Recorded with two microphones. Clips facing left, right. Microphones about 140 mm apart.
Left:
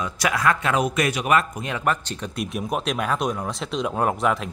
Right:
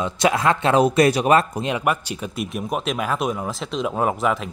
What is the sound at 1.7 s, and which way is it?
Speech, 10° right (ahead or behind).